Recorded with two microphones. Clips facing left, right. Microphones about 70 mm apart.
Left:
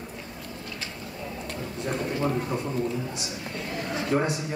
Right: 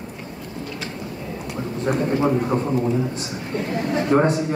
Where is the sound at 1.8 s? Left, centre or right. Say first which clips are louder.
Right 8 dB; right.